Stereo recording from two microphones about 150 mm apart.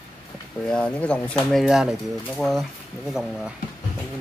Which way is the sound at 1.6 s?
5° right (ahead or behind).